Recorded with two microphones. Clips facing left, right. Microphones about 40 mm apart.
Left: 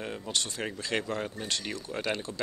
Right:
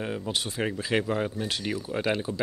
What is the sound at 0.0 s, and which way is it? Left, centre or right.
Speech, centre.